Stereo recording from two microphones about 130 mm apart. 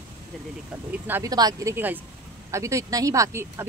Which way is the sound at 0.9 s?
15° right (ahead or behind).